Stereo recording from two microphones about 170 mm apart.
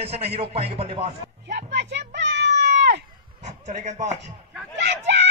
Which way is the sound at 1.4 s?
90° right.